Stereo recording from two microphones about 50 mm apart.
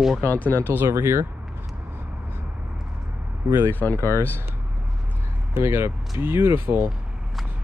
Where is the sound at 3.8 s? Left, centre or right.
Left.